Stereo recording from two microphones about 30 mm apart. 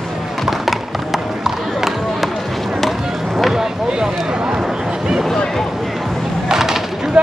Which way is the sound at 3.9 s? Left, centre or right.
Right.